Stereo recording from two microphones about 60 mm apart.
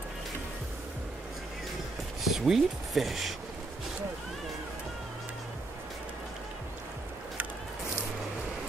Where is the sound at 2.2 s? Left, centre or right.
Centre.